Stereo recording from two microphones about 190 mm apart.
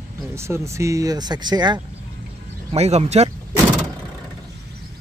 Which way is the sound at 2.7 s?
35° right (ahead or behind).